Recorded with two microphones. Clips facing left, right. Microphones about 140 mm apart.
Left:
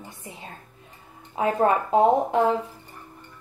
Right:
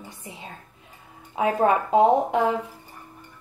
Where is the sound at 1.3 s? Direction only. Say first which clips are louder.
Right 1 dB; 20° right (ahead or behind).